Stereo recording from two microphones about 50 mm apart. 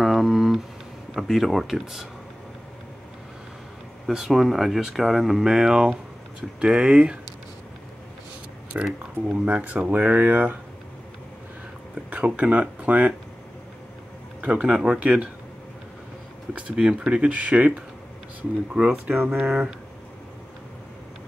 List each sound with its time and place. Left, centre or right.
0.0 s a sound: centre
1.1 s speech: centre
4.1 s speech: centre; by 7.2 s right
8.7 s speech: right
12.1 s speech: right
14.4 s speech: right
16.5 s speech: right
19.0 s speech: right
19.4 s speech: centre